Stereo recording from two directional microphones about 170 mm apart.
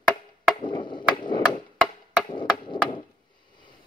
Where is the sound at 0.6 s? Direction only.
30° left (ahead or behind).